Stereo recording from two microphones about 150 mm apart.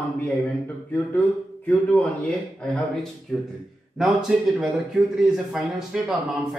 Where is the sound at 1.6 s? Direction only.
10° left (ahead or behind).